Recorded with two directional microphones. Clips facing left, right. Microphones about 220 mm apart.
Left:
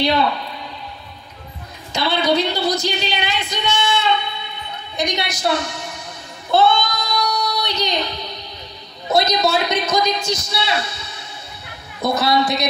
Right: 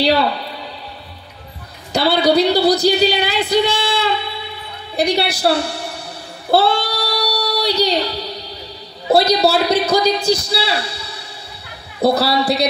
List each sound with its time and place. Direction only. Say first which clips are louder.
1.9 s a woman's voice: right 4 dB; 35° right (ahead or behind)
6.5 s child singing: right 1 dB; 35° right (ahead or behind)
9.0 s a man's voice: right 4 dB; 35° right (ahead or behind)